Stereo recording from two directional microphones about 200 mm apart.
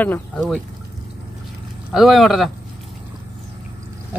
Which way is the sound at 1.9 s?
Centre (ahead or behind).